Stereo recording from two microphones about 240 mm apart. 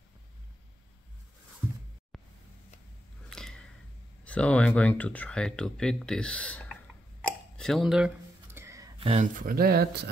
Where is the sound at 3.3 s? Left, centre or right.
Centre.